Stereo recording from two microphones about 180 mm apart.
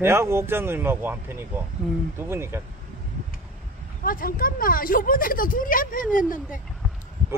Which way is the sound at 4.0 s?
50° left (ahead or behind).